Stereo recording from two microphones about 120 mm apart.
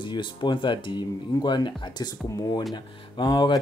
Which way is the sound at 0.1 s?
40° left (ahead or behind).